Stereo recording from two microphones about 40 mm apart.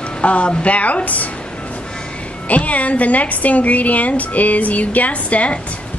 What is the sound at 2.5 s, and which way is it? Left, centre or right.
A woman's voice, left.